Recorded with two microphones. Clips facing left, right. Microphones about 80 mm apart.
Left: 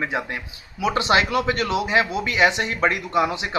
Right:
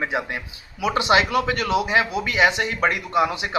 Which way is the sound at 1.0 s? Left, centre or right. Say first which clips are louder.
Right 2 dB; left.